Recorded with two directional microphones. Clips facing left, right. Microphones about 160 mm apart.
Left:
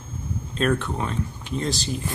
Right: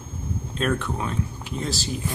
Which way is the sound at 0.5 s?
Centre (ahead or behind).